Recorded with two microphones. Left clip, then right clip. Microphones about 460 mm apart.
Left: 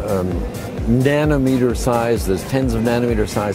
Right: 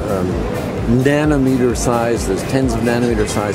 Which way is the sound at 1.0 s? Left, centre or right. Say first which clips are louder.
Right 1 dB; left.